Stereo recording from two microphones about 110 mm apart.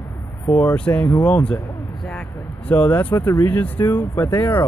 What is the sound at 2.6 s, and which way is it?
Speech, 15° left (ahead or behind).